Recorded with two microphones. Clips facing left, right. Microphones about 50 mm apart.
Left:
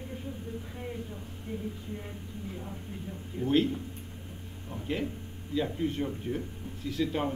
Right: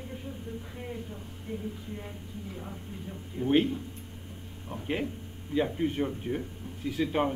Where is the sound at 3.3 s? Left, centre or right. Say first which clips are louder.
Right 1 dB; right.